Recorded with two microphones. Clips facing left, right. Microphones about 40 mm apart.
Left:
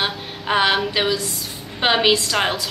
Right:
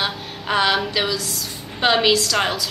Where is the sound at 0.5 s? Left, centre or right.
Centre.